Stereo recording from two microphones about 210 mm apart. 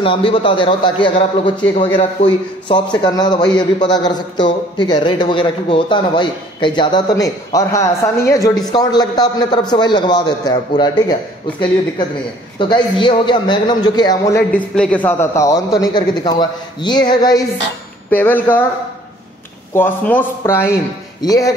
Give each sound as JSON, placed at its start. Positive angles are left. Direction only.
{"t": 0.0, "sound": "a man's voice", "side_deg": 25}
{"t": 12.5, "sound": "a man's voice", "side_deg": 25}
{"t": 14.8, "sound": "a man's voice", "side_deg": 5}
{"t": 18.1, "sound": "a man's voice", "side_deg": 10}
{"t": 19.7, "sound": "a man's voice", "side_deg": 10}